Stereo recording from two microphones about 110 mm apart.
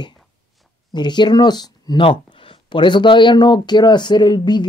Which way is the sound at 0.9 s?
45° left (ahead or behind).